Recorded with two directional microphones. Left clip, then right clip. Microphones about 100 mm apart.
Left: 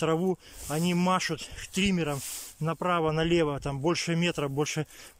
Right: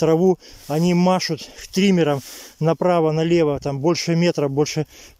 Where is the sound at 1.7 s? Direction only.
90° right.